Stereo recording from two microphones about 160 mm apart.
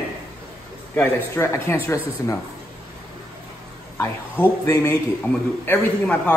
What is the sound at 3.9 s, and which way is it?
Speech, 15° left (ahead or behind).